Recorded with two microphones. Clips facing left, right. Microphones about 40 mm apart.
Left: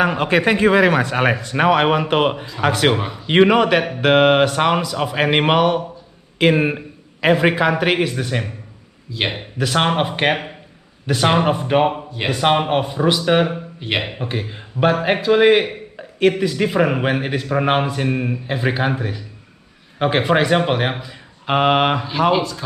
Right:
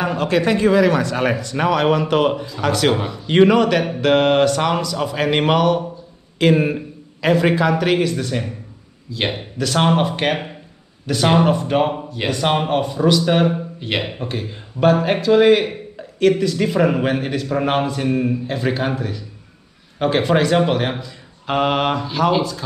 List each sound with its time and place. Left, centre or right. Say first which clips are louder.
0.0 s a man's voice: left 2 dB; left